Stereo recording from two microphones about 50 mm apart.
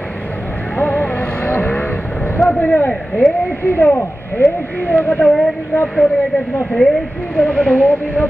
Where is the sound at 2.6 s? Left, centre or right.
Left.